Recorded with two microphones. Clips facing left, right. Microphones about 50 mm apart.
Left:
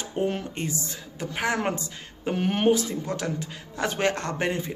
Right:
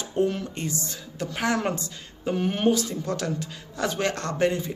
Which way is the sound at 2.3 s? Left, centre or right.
Left.